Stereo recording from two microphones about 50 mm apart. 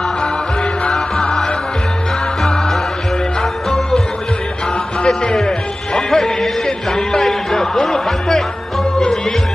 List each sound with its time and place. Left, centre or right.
0.8 s music: centre
5.0 s speech: centre